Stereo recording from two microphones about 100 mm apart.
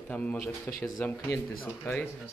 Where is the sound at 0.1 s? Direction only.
15° left (ahead or behind).